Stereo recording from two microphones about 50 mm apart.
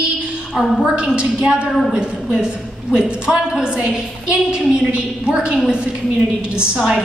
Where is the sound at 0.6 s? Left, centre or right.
Centre.